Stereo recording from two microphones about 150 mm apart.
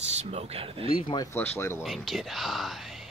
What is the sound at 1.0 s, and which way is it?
Speech, 25° left (ahead or behind).